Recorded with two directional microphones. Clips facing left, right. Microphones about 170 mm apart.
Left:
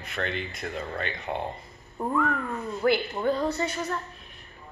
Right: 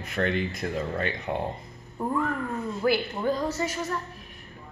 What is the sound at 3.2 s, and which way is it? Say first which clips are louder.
Speech: left 1 dB; 5° right (ahead or behind).